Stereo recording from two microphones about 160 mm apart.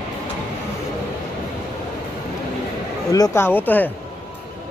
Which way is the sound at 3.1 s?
20° left (ahead or behind).